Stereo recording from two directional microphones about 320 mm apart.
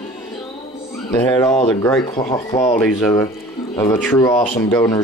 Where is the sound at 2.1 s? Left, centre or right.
Centre.